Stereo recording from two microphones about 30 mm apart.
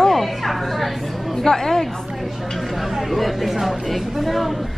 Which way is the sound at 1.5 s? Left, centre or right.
Centre.